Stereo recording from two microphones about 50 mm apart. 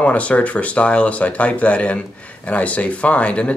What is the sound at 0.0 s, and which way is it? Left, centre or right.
Speech, left.